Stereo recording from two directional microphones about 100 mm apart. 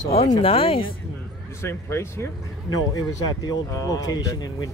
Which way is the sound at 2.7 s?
35° left (ahead or behind).